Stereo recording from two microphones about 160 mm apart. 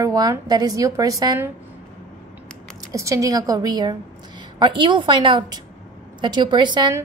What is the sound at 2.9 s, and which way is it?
A woman's voice, 20° right (ahead or behind).